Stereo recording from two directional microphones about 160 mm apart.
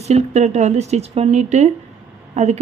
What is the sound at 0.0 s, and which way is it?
A woman's voice, 45° right (ahead or behind).